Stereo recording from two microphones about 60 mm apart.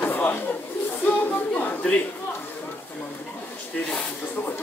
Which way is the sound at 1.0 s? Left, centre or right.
Left.